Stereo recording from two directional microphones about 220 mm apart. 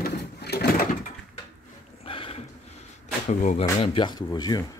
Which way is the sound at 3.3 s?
30° left (ahead or behind).